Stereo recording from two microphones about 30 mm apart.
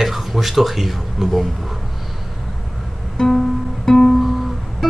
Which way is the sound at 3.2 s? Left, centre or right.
Centre.